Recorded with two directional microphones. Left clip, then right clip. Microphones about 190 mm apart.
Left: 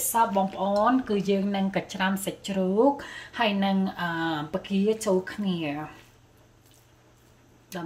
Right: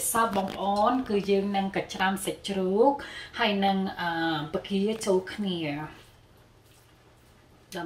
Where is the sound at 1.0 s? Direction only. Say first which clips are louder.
Right 1 dB; 65° left (ahead or behind).